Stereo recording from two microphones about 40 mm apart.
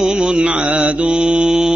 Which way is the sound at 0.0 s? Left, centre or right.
Right.